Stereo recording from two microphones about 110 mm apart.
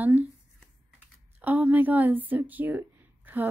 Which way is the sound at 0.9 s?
15° right (ahead or behind).